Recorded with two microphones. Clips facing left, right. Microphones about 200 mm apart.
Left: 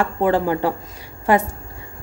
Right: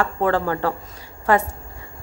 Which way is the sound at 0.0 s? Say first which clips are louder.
Left 2 dB; 15° left (ahead or behind).